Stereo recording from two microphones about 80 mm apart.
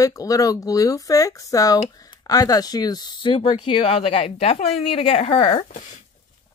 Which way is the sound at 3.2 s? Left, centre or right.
Left.